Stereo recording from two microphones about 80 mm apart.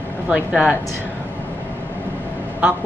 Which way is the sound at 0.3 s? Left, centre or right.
Centre.